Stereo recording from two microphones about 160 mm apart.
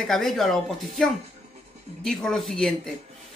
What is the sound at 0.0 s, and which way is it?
Speech, centre (ahead or behind).